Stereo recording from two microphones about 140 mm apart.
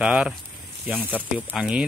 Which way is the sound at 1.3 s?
5° right (ahead or behind).